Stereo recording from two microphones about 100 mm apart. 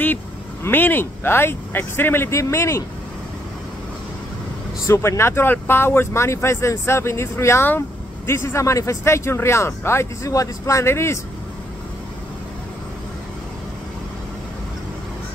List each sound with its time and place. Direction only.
0.7 s speech: 20° left (ahead or behind)
4.8 s speech: 30° left (ahead or behind)